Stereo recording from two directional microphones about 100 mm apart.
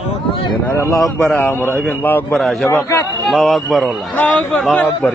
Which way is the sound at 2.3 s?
5° left (ahead or behind).